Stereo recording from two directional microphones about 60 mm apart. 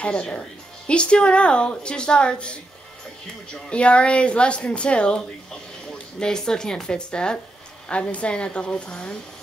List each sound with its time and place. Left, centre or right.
0.0 s a woman's voice: centre